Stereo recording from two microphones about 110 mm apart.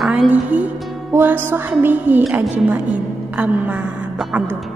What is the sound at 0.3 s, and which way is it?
A woman's voice, 15° right (ahead or behind).